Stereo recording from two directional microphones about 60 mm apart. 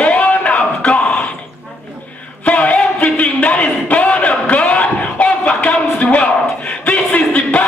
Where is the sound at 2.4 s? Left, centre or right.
Left.